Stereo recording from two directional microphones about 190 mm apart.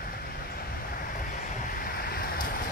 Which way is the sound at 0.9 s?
45° left (ahead or behind).